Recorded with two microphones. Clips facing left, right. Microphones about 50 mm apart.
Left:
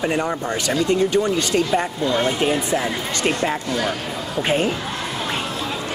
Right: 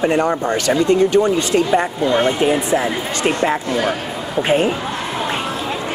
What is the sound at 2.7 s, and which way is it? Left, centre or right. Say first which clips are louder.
Speech: right 4 dB; right.